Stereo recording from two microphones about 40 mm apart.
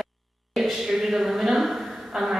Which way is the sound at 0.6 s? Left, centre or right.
Centre.